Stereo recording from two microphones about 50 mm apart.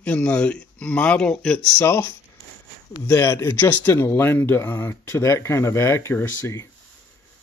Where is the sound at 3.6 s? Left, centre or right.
Left.